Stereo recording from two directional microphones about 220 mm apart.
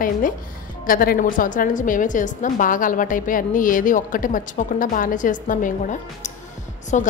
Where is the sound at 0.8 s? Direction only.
40° left (ahead or behind).